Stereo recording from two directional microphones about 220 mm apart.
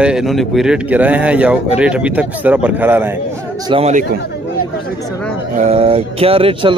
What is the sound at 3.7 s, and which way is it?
Speech, 30° right (ahead or behind).